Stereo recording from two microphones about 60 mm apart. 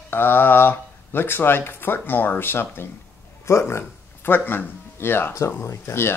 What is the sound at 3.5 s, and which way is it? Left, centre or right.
Speech, left.